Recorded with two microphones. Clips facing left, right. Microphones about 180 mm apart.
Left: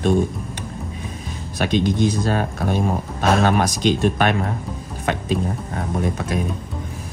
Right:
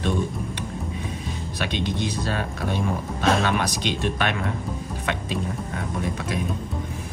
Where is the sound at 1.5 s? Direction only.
45° left (ahead or behind).